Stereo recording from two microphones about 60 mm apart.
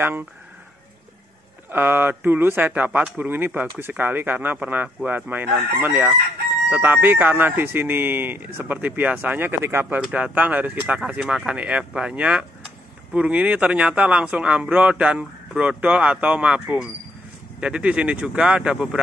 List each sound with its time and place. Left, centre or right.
0.0 s speech: right
1.7 s speech: right
10.1 s speech: right
11.1 s speech: centre